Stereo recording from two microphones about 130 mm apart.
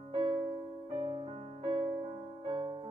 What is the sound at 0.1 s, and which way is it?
Music, 40° right (ahead or behind).